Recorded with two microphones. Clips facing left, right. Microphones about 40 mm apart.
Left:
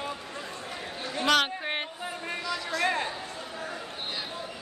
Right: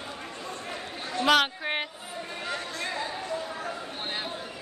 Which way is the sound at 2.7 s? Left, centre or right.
Left.